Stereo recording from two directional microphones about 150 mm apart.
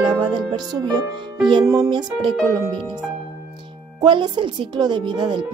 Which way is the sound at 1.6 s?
20° right (ahead or behind).